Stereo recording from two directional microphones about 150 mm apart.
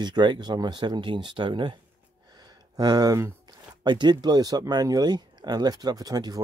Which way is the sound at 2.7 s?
25° right (ahead or behind).